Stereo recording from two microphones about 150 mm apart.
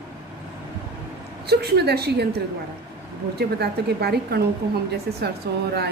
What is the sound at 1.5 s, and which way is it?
Speech, 90° right.